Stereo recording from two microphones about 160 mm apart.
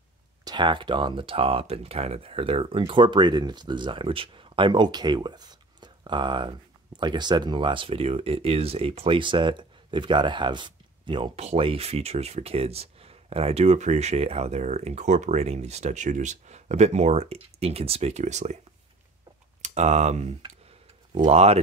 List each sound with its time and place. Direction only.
0.5 s speech: 30° right (ahead or behind); by 18.6 s 45° right (ahead or behind)
19.6 s speech: 45° right (ahead or behind)